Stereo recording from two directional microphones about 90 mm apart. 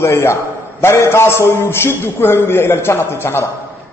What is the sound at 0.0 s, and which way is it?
A man's voice, 30° left (ahead or behind).